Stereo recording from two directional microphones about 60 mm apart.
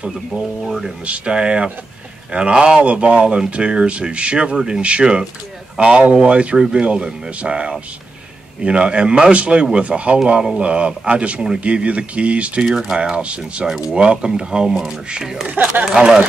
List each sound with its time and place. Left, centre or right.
0.7 s speech: centre
1.0 s speech: centre
12.6 s speech: centre
15.4 s speech: right
15.8 s speech: centre